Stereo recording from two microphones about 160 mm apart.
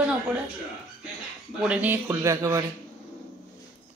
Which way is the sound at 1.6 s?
10° right (ahead or behind).